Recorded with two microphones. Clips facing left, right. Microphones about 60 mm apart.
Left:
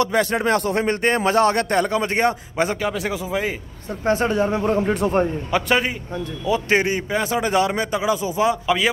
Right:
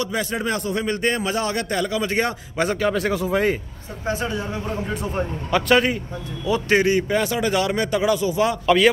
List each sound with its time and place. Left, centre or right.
0.0 s a man's voice: left
2.8 s a man's voice: centre
4.0 s speech: left
5.5 s speech: centre
6.7 s speech: left
7.0 s speech: centre
7.2 s speech: left
8.6 s speech: centre